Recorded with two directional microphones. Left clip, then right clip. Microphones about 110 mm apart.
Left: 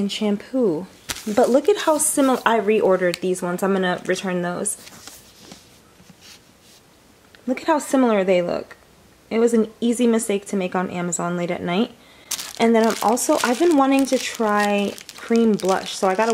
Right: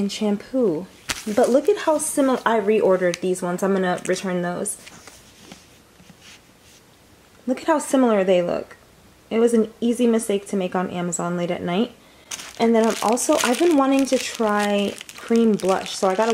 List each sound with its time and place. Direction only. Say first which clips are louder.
0.0 s speech: left 1 dB; centre (ahead or behind)
0.6 s speech: even; 15° left (ahead or behind)
1.0 s speech: left 1 dB; centre (ahead or behind)
1.8 s speech: left 1 dB; 15° left (ahead or behind)
4.1 s a sound: left 1 dB; centre (ahead or behind)
7.4 s speech: even; 5° right (ahead or behind)
9.8 s speech: even; 40° left (ahead or behind)
10.5 s speech: even; 5° left (ahead or behind)
12.3 s speech: left 1 dB; 20° left (ahead or behind); by 16.2 s 5° left (ahead or behind)